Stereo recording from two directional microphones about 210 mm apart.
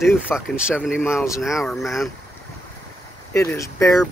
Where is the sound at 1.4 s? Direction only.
Centre (ahead or behind).